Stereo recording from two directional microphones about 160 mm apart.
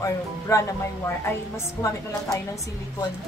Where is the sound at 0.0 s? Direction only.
20° left (ahead or behind).